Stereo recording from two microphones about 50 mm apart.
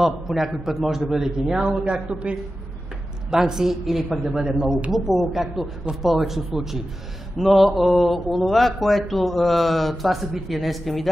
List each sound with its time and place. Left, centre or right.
0.0 s a woman's voice: centre